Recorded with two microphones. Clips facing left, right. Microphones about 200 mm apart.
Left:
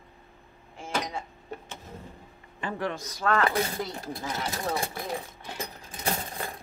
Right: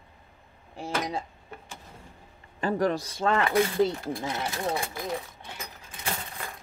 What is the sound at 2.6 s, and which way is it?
Speech, 40° right (ahead or behind).